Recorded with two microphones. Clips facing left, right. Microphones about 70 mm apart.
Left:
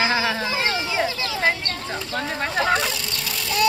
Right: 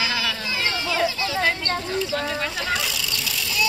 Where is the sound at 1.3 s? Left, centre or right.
Left.